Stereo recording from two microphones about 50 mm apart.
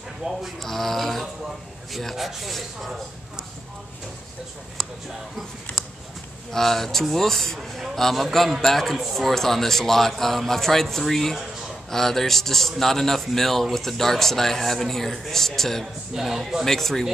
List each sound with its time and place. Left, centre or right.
0.2 s speech: right
0.6 s a man's voice: centre
5.8 s a sound: centre
6.5 s a man's voice: centre
16.6 s speech: centre